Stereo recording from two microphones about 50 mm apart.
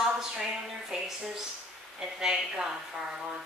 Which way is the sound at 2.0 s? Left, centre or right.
Centre.